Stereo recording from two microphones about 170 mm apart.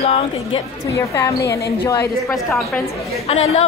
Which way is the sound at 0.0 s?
35° left (ahead or behind).